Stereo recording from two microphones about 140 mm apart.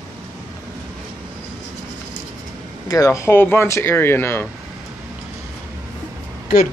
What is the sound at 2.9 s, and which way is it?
Speech, 25° left (ahead or behind).